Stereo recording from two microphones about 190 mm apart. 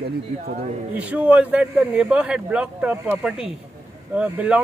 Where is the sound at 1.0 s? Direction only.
10° right (ahead or behind).